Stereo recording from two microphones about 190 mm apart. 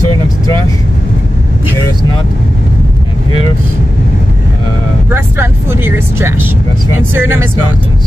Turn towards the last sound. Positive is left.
turn(degrees=-10)  # may be behind; listen again after turning